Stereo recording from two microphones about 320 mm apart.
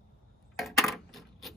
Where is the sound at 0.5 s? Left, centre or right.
Centre.